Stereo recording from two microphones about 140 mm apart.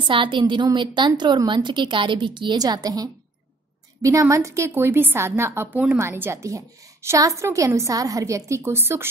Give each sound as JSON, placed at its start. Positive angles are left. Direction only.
{"t": 0.0, "sound": "a woman's voice", "side_deg": -35}